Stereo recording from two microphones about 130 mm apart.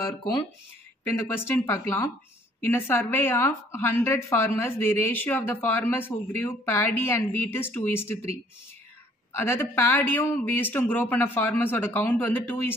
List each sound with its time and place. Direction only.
1.0 s a woman's voice: 15° left (ahead or behind)
9.3 s a woman's voice: 20° left (ahead or behind)